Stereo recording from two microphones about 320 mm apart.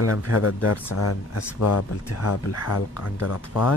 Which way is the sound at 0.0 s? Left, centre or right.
Left.